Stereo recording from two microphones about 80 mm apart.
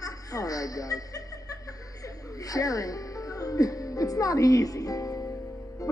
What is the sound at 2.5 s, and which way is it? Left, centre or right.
Speech, left.